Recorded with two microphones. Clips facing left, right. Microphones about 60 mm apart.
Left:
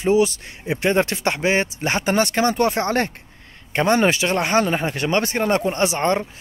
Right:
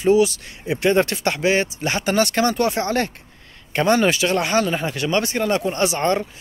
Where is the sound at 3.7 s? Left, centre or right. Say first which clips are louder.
Even; left.